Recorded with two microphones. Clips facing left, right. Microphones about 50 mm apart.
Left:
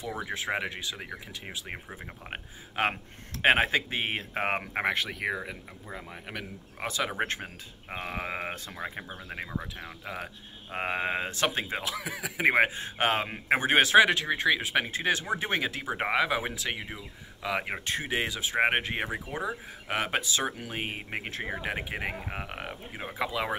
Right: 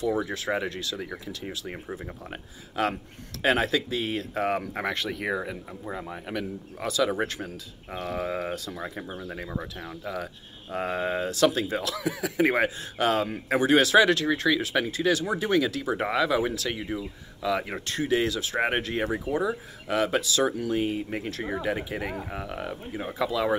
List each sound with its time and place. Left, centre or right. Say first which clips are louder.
0.2 s speech: right 3 dB; left
4.9 s speech: right 2 dB; centre
6.8 s speech: right 5 dB; left
9.8 s speech: right 4 dB; centre
12.5 s speech: even; left
20.8 s speech: right 6 dB; left
21.3 s speech: right 4 dB; left